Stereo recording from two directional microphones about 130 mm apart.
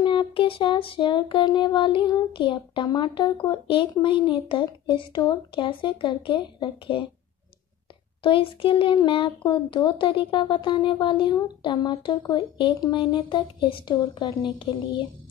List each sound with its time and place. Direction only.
0.0 s speech: 40° left (ahead or behind)
8.2 s speech: 40° left (ahead or behind)